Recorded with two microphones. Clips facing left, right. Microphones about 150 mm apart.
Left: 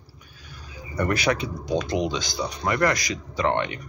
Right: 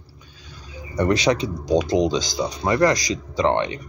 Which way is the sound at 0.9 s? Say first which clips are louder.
Right 4 dB; 20° right (ahead or behind).